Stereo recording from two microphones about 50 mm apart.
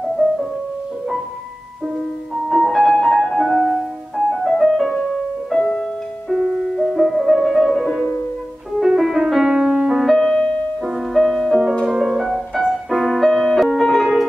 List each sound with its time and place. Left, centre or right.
2.4 s music: centre
5.6 s music: centre
6.2 s music: centre
10.0 s music: centre
12.0 s music: centre